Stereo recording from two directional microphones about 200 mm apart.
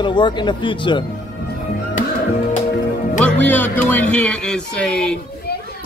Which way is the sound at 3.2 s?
10° left (ahead or behind).